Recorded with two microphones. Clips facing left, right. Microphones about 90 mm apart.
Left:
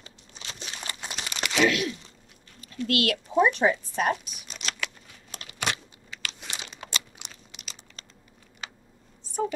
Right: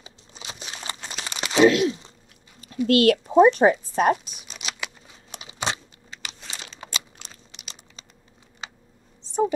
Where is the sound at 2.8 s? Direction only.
30° right (ahead or behind).